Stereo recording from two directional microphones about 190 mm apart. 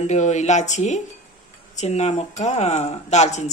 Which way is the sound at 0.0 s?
35° left (ahead or behind).